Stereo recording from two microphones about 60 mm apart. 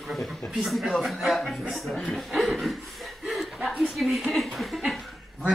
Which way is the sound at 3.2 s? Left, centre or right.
Centre.